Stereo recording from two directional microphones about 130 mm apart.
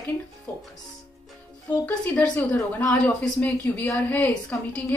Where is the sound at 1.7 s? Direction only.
10° left (ahead or behind).